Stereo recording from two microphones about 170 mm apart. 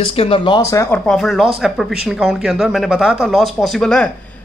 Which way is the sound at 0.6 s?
15° left (ahead or behind).